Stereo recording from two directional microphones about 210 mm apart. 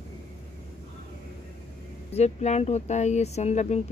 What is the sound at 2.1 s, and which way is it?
Speech, 30° left (ahead or behind).